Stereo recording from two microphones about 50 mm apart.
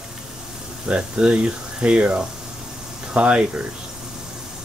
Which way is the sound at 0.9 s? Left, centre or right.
Centre.